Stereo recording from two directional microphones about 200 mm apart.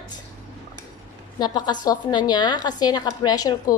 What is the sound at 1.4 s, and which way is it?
A woman's voice, 20° left (ahead or behind).